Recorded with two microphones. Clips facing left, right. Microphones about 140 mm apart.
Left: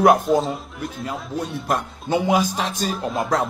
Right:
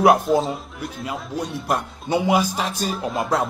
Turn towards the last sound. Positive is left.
turn(degrees=0)  # may be behind; listen again after turning